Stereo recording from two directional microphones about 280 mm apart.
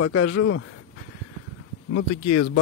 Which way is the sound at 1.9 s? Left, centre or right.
Left.